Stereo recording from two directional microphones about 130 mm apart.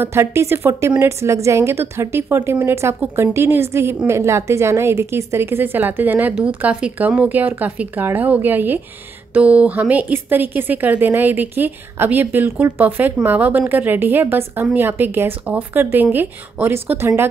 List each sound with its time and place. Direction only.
0.0 s a woman's voice: 20° right (ahead or behind)